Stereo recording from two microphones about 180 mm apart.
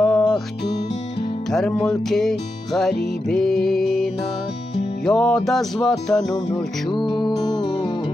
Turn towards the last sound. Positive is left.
turn(degrees=25)  # may be behind; listen again after turning